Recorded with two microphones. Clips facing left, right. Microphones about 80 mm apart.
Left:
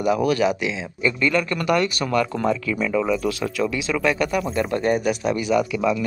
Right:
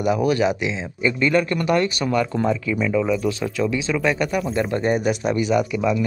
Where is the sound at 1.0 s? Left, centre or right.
Centre.